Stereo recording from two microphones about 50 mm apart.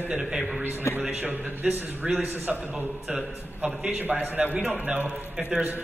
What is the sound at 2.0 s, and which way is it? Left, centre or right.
Speech, centre.